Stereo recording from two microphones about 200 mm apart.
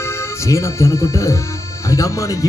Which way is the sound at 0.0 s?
15° left (ahead or behind).